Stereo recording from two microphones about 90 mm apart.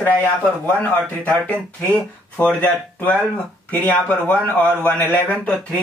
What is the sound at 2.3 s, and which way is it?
Speech, 15° left (ahead or behind).